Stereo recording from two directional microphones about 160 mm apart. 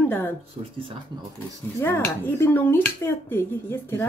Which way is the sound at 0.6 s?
35° right (ahead or behind).